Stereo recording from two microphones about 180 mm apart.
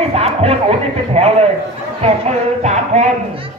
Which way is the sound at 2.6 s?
40° right (ahead or behind).